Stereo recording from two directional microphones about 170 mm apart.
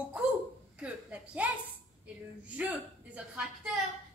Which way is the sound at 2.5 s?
10° right (ahead or behind).